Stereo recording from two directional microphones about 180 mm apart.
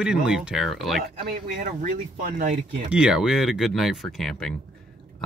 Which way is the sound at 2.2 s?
50° right (ahead or behind).